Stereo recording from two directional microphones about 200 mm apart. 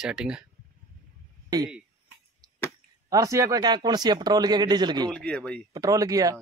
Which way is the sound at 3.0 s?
15° right (ahead or behind).